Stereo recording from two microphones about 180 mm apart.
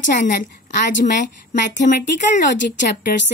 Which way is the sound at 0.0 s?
45° left (ahead or behind).